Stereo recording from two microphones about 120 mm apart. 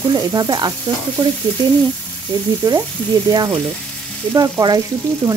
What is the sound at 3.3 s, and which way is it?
Sizzle, 30° right (ahead or behind).